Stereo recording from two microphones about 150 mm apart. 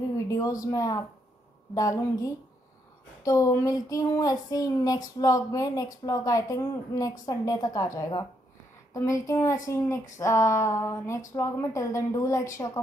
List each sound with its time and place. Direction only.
0.3 s speech: 20° left (ahead or behind)